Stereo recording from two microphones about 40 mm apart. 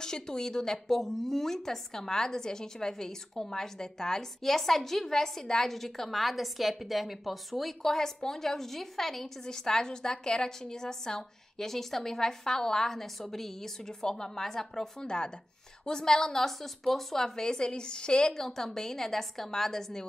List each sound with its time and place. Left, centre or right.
0.0 s a woman's voice: centre
7.8 s a woman's voice: centre
18.4 s a woman's voice: centre